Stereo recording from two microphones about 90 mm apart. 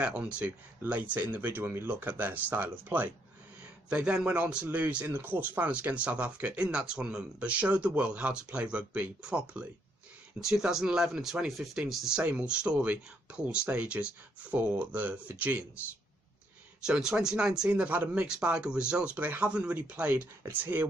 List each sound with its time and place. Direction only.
0.0 s speech: 15° right (ahead or behind)
12.2 s speech: 15° right (ahead or behind)
16.8 s speech: 5° right (ahead or behind); by 20.8 s 25° right (ahead or behind)